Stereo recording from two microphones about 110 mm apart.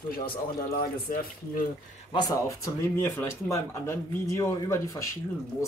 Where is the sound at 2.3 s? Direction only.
30° left (ahead or behind).